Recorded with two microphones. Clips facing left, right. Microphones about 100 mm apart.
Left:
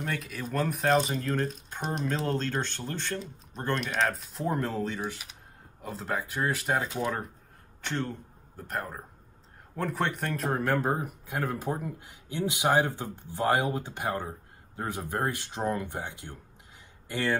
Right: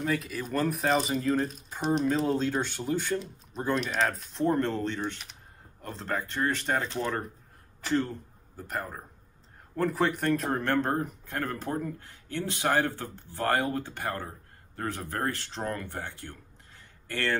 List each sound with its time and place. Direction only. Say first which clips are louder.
0.0 s speech: right 4 dB; centre (ahead or behind)